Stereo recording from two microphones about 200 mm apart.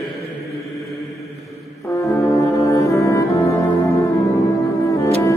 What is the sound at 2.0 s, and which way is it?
Brass instrument, 15° left (ahead or behind).